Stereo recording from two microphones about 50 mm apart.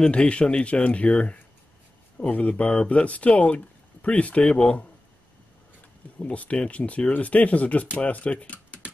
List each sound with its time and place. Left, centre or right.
0.0 s speech: left
4.5 s speech: centre
6.1 s speech: left